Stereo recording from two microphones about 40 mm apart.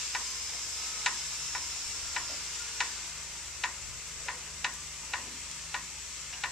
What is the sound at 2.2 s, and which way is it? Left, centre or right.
Tick-tock, centre.